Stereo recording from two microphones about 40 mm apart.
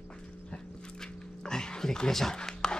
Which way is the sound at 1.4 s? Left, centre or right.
Centre.